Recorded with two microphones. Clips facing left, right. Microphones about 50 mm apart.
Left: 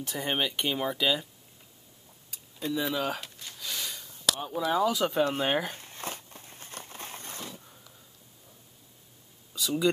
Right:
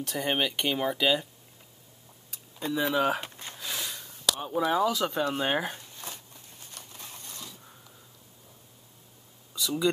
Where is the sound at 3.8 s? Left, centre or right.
Centre.